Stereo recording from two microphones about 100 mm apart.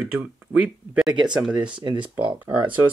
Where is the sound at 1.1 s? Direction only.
45° right (ahead or behind).